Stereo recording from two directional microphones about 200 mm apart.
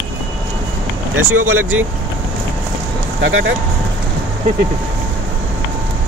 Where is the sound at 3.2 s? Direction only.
75° right (ahead or behind).